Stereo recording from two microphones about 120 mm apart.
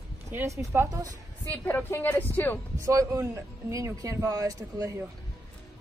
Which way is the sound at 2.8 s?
25° right (ahead or behind).